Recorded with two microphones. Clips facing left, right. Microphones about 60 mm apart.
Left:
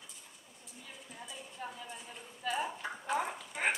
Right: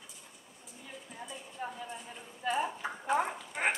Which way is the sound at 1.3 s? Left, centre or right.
Centre.